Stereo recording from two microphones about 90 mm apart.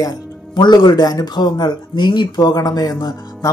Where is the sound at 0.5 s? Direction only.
55° left (ahead or behind).